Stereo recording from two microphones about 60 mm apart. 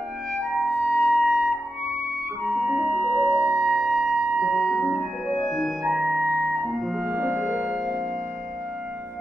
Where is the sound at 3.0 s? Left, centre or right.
Centre.